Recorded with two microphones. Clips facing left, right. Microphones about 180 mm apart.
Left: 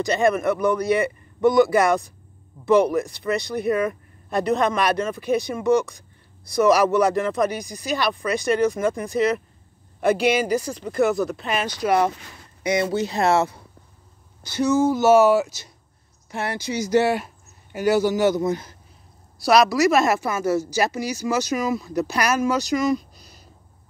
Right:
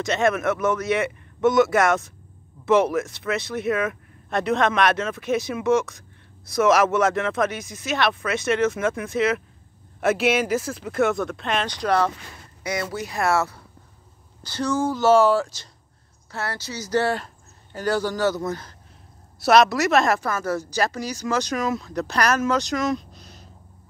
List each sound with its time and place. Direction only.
0.0 s a man's voice: centre (ahead or behind)
12.6 s a woman's voice: 25° left (ahead or behind)
19.4 s a man's voice: centre (ahead or behind)